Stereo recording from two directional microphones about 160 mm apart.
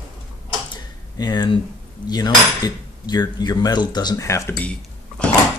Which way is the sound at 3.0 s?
25° left (ahead or behind).